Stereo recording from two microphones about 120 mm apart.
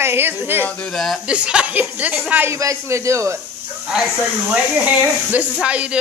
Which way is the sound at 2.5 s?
25° right (ahead or behind).